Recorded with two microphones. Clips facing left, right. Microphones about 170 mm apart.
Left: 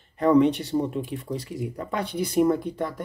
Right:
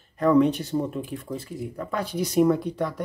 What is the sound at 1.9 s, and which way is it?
Speech, 60° left (ahead or behind).